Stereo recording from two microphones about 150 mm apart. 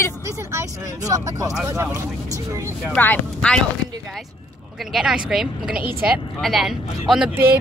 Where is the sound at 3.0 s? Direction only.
10° left (ahead or behind).